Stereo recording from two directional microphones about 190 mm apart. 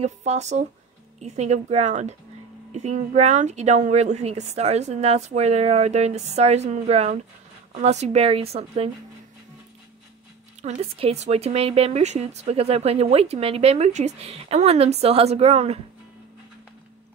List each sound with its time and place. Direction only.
0.0 s speech: 35° right (ahead or behind)
10.6 s speech: 30° right (ahead or behind)